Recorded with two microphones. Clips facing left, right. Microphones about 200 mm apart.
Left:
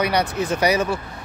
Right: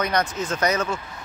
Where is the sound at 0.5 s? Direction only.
15° left (ahead or behind).